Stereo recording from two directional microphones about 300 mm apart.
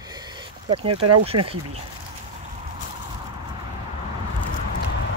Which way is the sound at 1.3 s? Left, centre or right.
Right.